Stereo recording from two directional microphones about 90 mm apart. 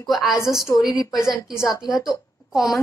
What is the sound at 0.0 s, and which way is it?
Speech, centre (ahead or behind).